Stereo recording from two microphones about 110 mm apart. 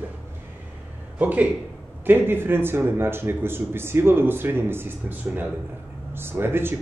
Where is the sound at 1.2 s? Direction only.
15° right (ahead or behind).